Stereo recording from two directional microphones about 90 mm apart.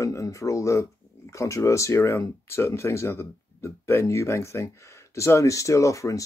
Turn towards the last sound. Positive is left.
turn(degrees=35)  # may be behind; listen again after turning